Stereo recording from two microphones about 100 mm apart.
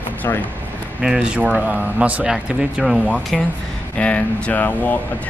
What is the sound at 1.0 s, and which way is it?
Speech, 10° right (ahead or behind).